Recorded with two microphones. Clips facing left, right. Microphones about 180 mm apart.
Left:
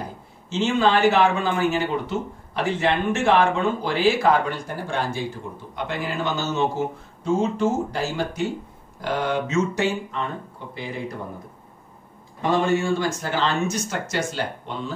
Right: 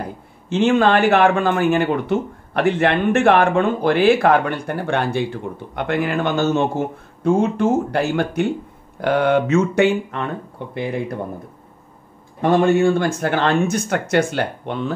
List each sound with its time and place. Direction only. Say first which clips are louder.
0.5 s a man's voice: right 5 dB; 55° right (ahead or behind)
12.4 s a man's voice: right 6 dB; 55° right (ahead or behind)